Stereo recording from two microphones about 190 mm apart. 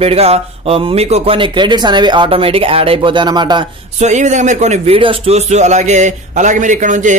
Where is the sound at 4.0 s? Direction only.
40° right (ahead or behind).